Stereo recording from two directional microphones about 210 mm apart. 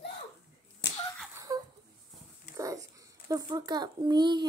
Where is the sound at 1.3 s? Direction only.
15° right (ahead or behind).